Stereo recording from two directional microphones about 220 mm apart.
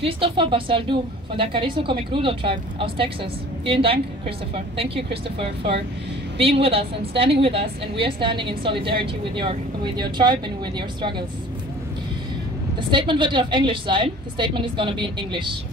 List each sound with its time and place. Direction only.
0.0 s a woman's voice: 25° right (ahead or behind)
12.9 s a woman's voice: 20° right (ahead or behind)